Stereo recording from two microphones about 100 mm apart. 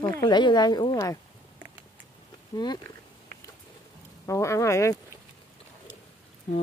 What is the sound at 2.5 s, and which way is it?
Speech, 45° left (ahead or behind).